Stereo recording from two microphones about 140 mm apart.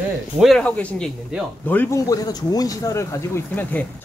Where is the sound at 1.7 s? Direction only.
15° left (ahead or behind).